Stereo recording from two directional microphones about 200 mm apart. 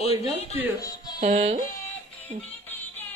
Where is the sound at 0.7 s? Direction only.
20° left (ahead or behind).